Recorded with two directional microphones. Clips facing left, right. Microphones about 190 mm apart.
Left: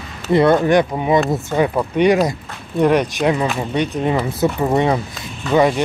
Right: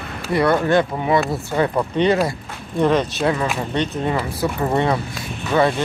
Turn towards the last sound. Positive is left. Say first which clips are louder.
# left 3 dB
turn(degrees=15)  # may be behind; listen again after turning